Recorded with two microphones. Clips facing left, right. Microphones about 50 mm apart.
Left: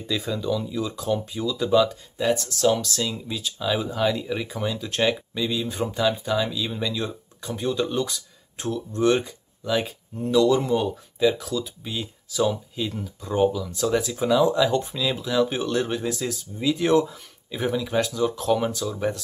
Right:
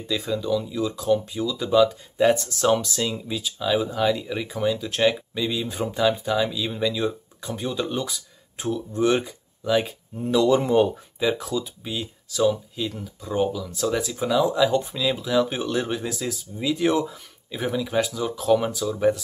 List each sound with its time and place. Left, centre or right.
0.0 s speech: centre
2.1 s speech: right; by 10.4 s centre
10.4 s speech: right
11.1 s speech: centre
11.8 s speech: centre